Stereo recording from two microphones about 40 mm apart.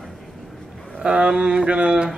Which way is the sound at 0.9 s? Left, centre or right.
Right.